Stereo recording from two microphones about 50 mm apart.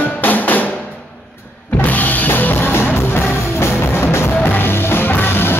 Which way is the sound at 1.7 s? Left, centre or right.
Left.